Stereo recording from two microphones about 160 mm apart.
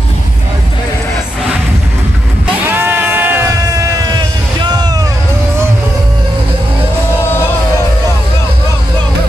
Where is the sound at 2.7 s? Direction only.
15° right (ahead or behind).